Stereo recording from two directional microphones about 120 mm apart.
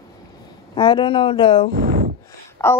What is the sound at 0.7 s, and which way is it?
Speech, 45° left (ahead or behind).